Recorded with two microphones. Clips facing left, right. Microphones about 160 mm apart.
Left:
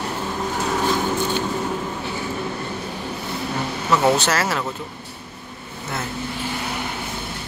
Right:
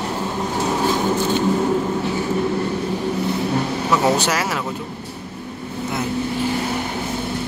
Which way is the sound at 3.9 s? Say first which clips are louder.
Left 1 dB; 10° right (ahead or behind).